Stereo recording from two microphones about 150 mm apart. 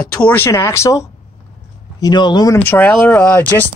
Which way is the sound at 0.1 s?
10° left (ahead or behind).